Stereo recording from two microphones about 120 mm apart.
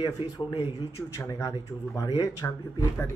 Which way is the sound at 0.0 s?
40° left (ahead or behind).